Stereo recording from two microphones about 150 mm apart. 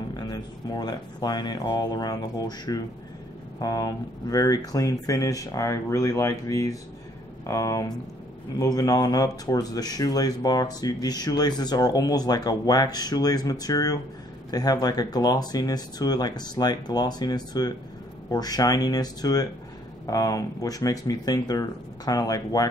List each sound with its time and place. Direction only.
0.1 s speech: 25° left (ahead or behind)